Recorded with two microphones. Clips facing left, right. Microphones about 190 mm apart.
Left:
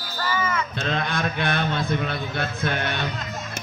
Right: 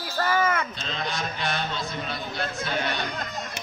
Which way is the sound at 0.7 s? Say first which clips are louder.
Left 6 dB; 55° left (ahead or behind).